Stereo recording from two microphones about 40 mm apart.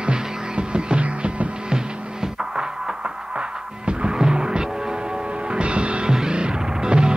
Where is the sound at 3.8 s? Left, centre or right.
Right.